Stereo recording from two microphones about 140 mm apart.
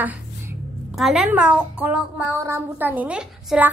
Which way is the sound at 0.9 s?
5° right (ahead or behind).